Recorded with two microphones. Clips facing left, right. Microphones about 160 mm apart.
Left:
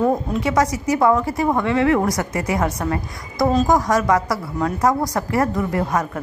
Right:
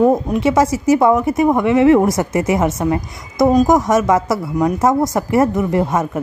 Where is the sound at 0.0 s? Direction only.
20° right (ahead or behind).